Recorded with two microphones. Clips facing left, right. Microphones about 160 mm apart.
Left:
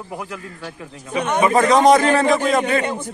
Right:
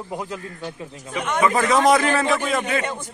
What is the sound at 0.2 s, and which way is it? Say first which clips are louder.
Speech: right 1 dB; 25° right (ahead or behind).